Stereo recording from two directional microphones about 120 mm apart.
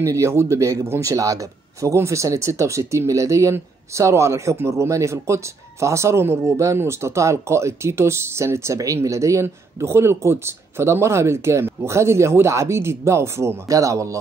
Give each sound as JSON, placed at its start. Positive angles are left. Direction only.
{"t": 0.0, "sound": "speech", "side_deg": -25}